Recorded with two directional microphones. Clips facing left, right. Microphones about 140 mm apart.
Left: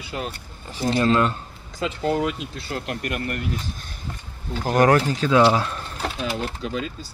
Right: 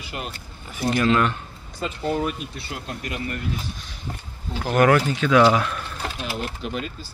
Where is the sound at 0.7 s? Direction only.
30° left (ahead or behind).